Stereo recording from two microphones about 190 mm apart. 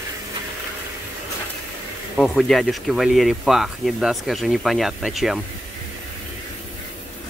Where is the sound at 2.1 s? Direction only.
5° left (ahead or behind).